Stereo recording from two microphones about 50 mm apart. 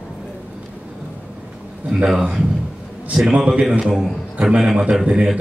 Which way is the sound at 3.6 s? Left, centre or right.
Centre.